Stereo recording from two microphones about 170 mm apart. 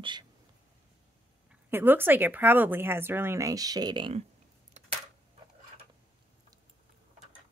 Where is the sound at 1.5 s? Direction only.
10° right (ahead or behind); by 4.2 s 30° right (ahead or behind).